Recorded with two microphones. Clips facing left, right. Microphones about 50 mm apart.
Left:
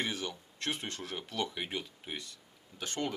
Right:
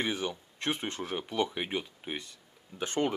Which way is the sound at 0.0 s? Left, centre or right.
Centre.